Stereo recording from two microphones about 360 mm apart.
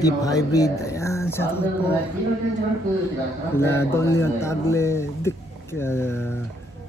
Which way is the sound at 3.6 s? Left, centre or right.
Centre.